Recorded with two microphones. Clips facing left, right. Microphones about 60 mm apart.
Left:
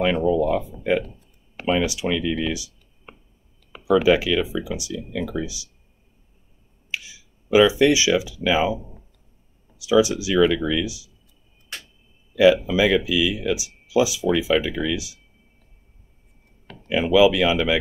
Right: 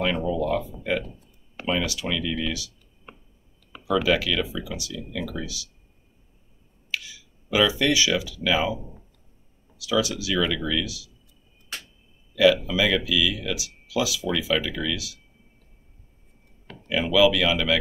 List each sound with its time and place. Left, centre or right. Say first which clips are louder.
0.0 s speech: left 5 dB; centre
3.8 s speech: left 5 dB; centre
6.9 s speech: even; left
9.8 s speech: left 7 dB; left
12.6 s speech: left 4 dB; left
17.1 s speech: left 3 dB; left